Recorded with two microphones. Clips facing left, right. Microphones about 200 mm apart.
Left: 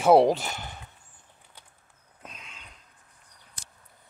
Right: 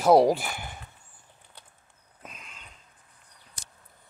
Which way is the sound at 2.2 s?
5° right (ahead or behind).